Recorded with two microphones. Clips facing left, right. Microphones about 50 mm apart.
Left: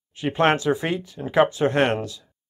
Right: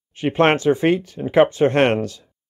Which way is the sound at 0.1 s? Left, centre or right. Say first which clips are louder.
Right 3 dB; right.